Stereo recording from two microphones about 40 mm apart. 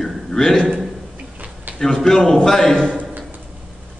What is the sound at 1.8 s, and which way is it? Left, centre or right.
Speech, centre.